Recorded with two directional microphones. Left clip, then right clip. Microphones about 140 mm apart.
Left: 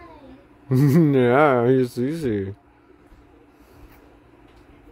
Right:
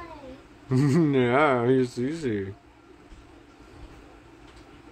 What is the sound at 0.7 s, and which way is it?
Speech, 40° left (ahead or behind).